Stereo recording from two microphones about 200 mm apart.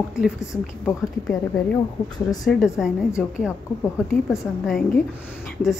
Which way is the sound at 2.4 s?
Centre (ahead or behind).